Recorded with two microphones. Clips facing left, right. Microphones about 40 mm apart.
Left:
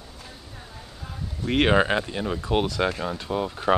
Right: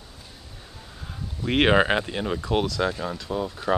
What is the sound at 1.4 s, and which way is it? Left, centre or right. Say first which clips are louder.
Speech: right 1 dB; centre.